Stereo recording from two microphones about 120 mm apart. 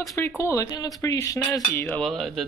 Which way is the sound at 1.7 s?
15° left (ahead or behind).